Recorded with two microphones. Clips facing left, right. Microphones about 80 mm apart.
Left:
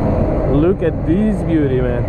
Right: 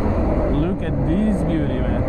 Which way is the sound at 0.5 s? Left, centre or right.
Left.